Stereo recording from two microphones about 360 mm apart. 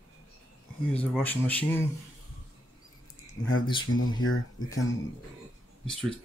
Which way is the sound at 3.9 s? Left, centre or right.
Left.